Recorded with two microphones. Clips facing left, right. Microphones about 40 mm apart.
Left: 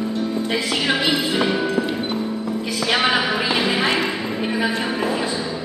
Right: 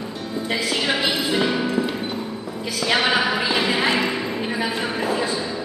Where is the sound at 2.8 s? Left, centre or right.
Centre.